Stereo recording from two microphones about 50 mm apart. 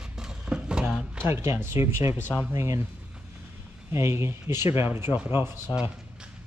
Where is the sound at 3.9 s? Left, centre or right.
Right.